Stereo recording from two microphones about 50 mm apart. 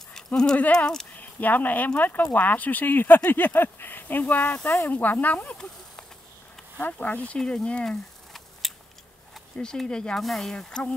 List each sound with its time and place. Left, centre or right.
0.1 s clip-clop: centre
0.7 s speech: centre
1.1 s speech: left
6.8 s speech: left
7.2 s speech: centre
8.6 s a sound: centre
9.6 s speech: centre
10.2 s speech: centre
10.5 s speech: centre